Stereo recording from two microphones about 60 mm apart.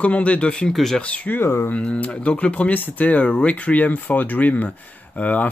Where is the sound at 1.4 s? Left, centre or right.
Left.